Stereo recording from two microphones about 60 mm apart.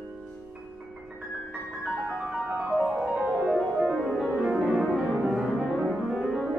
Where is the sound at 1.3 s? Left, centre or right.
Centre.